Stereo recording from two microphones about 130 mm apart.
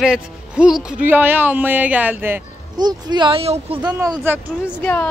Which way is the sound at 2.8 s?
35° right (ahead or behind).